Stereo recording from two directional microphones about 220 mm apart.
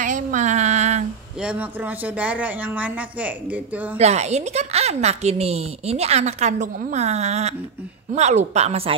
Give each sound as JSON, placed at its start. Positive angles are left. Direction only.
{"t": 0.0, "sound": "a sound", "side_deg": -35}
{"t": 1.4, "sound": "speech", "side_deg": -5}
{"t": 4.0, "sound": "a woman's voice", "side_deg": -30}